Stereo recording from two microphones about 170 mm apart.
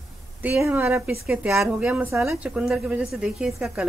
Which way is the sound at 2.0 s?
15° right (ahead or behind).